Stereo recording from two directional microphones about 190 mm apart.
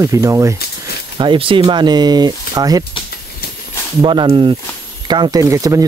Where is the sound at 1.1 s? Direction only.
25° right (ahead or behind).